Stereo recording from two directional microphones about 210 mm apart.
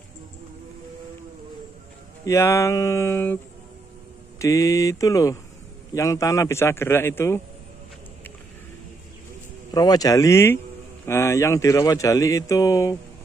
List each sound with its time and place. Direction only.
2.2 s speech: 15° left (ahead or behind)
4.4 s speech: 15° left (ahead or behind)
9.7 s speech: 20° left (ahead or behind)